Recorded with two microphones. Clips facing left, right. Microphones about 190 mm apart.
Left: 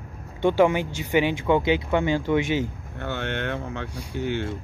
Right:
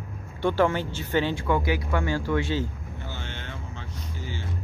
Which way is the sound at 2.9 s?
65° left (ahead or behind).